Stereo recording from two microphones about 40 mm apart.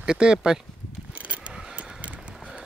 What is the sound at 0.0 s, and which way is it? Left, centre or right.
Speech, right.